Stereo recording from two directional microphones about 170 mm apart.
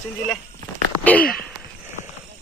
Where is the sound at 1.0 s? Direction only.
10° left (ahead or behind).